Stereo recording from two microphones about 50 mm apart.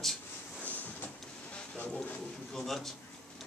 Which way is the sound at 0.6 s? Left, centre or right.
Left.